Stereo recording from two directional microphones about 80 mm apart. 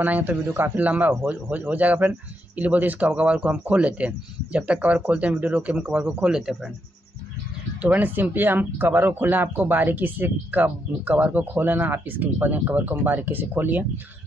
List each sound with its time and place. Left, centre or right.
0.0 s a man's voice: centre
7.8 s a man's voice: right